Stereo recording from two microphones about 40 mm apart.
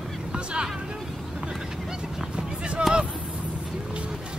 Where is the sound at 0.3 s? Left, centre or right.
Right.